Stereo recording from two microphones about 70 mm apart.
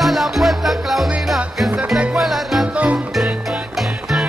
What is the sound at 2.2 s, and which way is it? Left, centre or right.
Music, centre.